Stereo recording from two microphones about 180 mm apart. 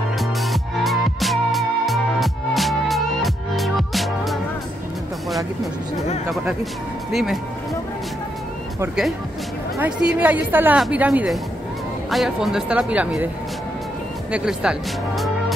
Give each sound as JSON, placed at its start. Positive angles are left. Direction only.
{"t": 0.2, "sound": "music", "side_deg": 0}
{"t": 6.3, "sound": "speech", "side_deg": 0}
{"t": 9.8, "sound": "a woman's voice", "side_deg": -5}
{"t": 14.3, "sound": "speech", "side_deg": -5}